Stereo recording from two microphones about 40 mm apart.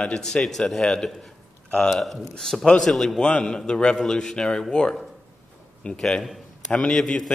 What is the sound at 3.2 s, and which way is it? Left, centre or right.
A man's voice, left.